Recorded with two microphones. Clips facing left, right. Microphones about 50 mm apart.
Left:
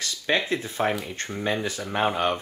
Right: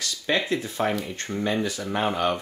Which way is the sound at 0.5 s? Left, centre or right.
Left.